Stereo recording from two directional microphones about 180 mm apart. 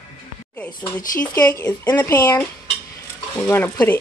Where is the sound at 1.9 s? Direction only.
20° left (ahead or behind).